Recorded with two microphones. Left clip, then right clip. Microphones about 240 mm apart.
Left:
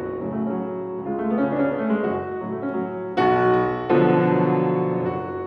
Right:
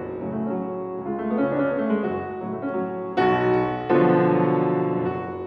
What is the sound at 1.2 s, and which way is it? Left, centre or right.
Music, right.